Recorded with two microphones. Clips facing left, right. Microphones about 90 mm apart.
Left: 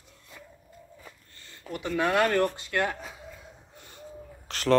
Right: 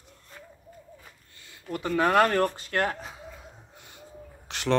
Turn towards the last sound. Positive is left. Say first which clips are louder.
# left 2 dB
turn(degrees=-15)  # may be behind; listen again after turning